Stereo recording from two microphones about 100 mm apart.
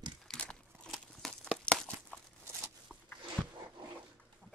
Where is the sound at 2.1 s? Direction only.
15° left (ahead or behind).